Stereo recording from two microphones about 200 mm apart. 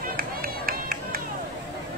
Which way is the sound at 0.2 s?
45° right (ahead or behind).